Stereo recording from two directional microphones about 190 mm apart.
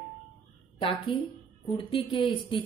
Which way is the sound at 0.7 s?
25° left (ahead or behind).